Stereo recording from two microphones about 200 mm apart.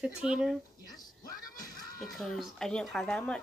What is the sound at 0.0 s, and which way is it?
Speech, 5° right (ahead or behind).